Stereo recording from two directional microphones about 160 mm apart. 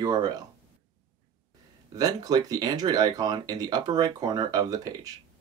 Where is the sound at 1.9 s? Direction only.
25° right (ahead or behind).